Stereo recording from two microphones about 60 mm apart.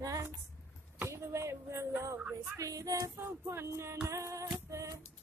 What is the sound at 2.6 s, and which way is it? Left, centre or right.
Music, right.